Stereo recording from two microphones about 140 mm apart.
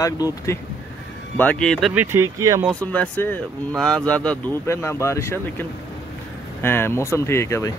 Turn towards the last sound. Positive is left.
turn(degrees=20)  # may be behind; listen again after turning